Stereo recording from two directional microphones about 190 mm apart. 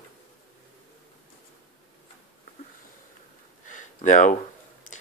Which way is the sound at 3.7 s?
40° left (ahead or behind).